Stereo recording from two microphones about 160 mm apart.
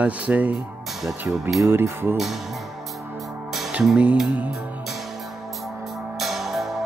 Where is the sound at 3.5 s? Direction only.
5° right (ahead or behind).